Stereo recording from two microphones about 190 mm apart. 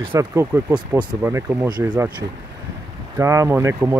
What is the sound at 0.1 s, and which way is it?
Speech, 15° right (ahead or behind).